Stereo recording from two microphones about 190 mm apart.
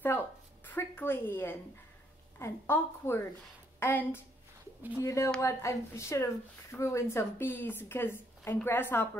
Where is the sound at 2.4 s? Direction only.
15° left (ahead or behind).